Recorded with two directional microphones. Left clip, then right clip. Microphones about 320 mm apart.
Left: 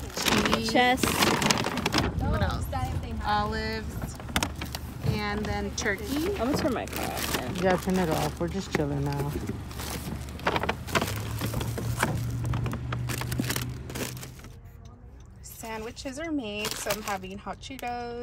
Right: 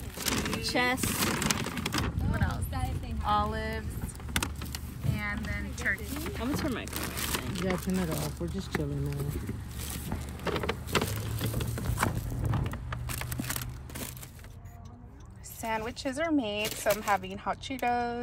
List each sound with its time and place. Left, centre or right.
0.1 s a sound: centre
3.3 s speech: centre
4.3 s vehicle: centre
6.9 s speech: centre
10.4 s vehicle: centre
11.1 s a sound: centre
15.6 s speech: centre